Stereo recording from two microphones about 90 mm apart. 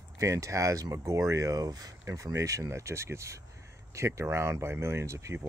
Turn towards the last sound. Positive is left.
turn(degrees=-35)  # may be behind; listen again after turning